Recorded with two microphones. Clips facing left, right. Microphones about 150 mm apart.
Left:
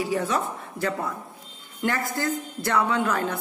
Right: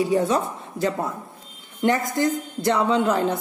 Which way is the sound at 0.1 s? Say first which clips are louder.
Right 5 dB; 20° right (ahead or behind).